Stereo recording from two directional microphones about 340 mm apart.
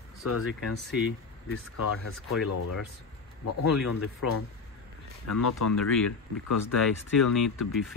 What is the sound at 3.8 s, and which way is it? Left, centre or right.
Speech, left.